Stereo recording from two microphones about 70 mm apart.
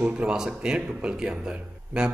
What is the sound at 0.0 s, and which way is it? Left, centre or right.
Speech, centre.